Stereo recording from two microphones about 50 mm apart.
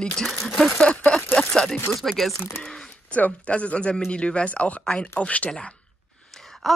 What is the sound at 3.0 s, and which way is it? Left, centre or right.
Speech, left.